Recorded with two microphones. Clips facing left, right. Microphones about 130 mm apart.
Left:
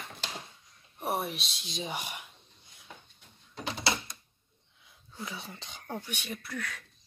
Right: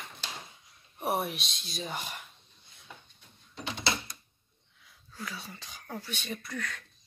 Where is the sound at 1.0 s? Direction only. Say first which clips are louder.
Right 2 dB; centre (ahead or behind).